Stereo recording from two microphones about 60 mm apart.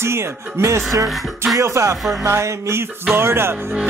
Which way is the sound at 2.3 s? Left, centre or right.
Right.